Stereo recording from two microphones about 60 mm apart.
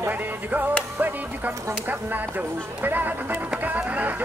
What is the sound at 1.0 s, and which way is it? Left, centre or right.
Speech, right.